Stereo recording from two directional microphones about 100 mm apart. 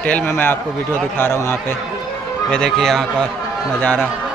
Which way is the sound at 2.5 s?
5° left (ahead or behind).